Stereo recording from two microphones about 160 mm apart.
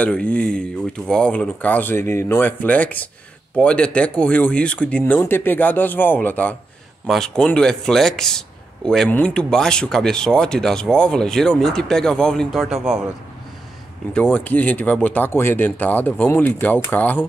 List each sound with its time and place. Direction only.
0.0 s speech: 10° left (ahead or behind)
14.1 s speech: 10° left (ahead or behind)